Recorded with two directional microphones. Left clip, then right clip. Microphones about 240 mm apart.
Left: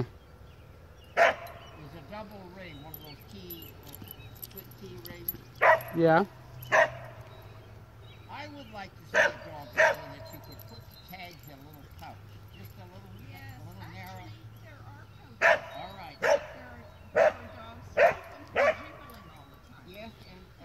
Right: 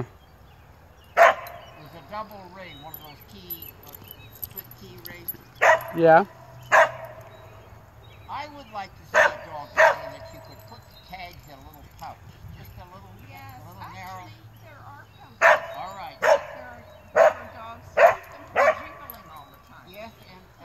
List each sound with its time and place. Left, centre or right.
1.2 s dog: centre
2.0 s speech: centre
5.1 s speech: right
5.9 s speech: centre
6.7 s dog: centre
8.3 s bow-wow: centre
11.1 s speech: centre
13.4 s a sound: centre
15.3 s dog: centre